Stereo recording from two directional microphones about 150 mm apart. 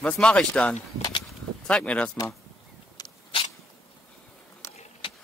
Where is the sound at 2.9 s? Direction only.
30° left (ahead or behind).